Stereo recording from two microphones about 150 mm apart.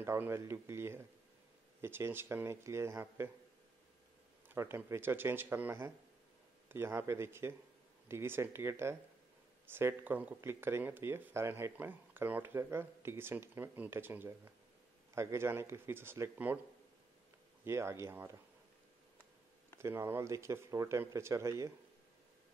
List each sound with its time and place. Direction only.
0.0 s speech: 15° right (ahead or behind)
4.6 s speech: 15° right (ahead or behind)
17.6 s speech: 15° right (ahead or behind)
19.8 s speech: 15° right (ahead or behind)